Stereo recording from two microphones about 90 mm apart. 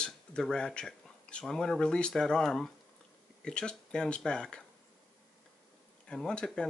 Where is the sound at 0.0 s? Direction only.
10° left (ahead or behind).